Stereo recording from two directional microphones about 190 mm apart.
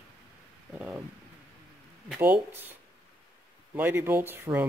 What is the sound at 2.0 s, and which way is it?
Speech, 5° right (ahead or behind).